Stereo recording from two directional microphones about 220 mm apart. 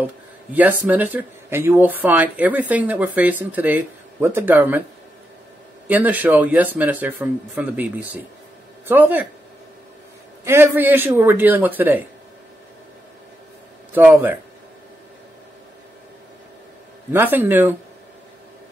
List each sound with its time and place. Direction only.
0.6 s speech: 5° right (ahead or behind)
5.9 s speech: 5° right (ahead or behind)
10.4 s speech: 10° right (ahead or behind)
13.9 s speech: 10° right (ahead or behind)
17.1 s speech: 10° right (ahead or behind)